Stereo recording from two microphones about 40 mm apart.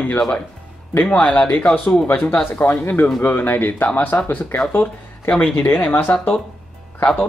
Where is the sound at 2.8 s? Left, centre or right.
Left.